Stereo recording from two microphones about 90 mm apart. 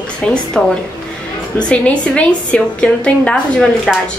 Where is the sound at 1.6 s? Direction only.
10° left (ahead or behind).